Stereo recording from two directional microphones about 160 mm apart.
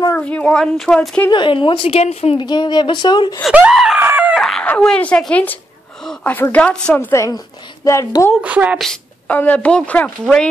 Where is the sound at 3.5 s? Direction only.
5° right (ahead or behind).